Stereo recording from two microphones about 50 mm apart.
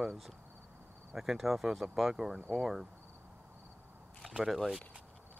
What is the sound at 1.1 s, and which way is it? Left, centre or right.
Speech, centre.